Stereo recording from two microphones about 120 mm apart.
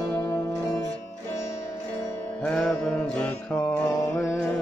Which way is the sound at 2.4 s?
5° left (ahead or behind).